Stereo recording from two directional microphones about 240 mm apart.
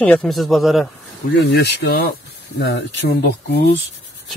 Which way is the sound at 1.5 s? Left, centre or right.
Left.